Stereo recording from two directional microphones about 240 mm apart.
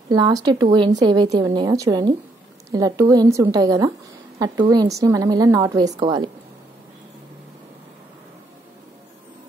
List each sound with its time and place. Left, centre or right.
0.1 s a woman's voice: centre